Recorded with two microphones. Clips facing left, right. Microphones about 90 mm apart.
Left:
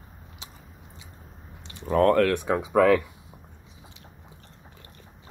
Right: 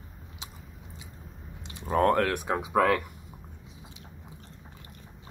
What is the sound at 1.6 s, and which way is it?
Speech, 15° right (ahead or behind).